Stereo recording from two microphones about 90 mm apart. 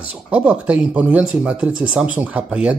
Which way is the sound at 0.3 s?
15° right (ahead or behind).